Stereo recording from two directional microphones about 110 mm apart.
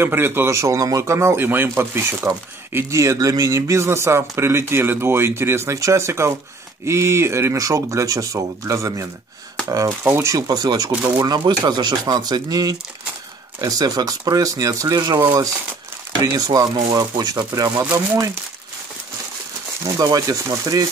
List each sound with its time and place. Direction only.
0.0 s speech: 20° right (ahead or behind)
10.0 s speech: 20° right (ahead or behind)
10.3 s speech: 35° right (ahead or behind)
10.9 s speech: 10° right (ahead or behind)
11.2 s speech: 45° right (ahead or behind)
19.8 s speech: 30° right (ahead or behind)